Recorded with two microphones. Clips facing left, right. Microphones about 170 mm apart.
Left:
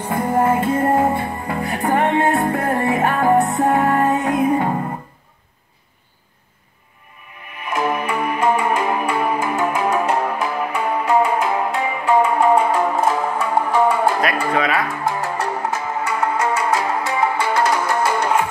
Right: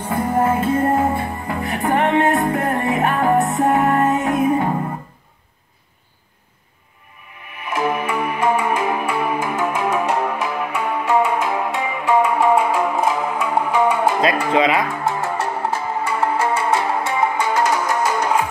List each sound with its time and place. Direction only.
0.1 s music: centre (ahead or behind)
7.7 s music: 5° right (ahead or behind)
14.5 s music: 20° right (ahead or behind)
17.2 s music: 15° right (ahead or behind)